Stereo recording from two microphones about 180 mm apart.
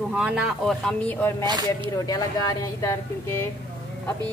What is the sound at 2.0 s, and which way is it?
Speech, 20° left (ahead or behind).